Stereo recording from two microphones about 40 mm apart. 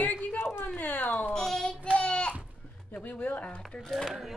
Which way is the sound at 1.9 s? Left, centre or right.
Left.